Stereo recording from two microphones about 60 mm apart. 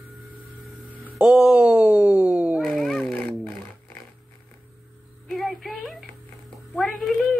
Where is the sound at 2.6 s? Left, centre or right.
Centre.